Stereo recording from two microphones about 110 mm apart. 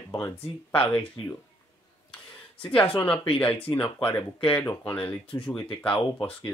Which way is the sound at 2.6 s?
15° left (ahead or behind).